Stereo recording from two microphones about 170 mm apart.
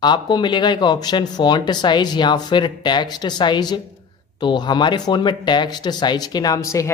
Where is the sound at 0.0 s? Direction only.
25° left (ahead or behind).